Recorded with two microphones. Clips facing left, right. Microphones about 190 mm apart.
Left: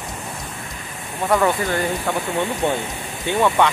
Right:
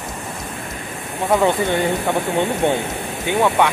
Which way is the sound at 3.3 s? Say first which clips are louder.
Right 1 dB; 15° right (ahead or behind).